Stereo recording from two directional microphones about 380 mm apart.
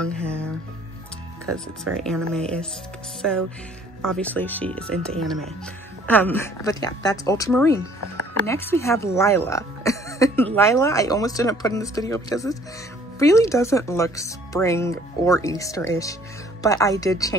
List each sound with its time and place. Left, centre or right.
0.0 s music: centre
1.9 s speech: centre